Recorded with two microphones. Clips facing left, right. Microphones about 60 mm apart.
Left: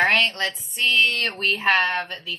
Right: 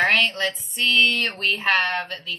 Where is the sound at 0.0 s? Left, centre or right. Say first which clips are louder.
Even; centre.